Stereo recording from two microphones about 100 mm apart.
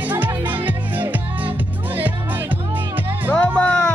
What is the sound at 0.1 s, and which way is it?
Music, 20° right (ahead or behind).